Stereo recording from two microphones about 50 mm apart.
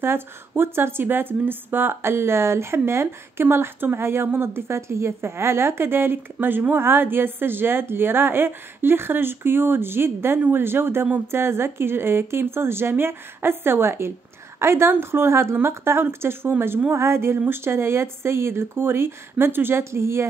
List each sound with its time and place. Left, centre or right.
0.0 s speech: right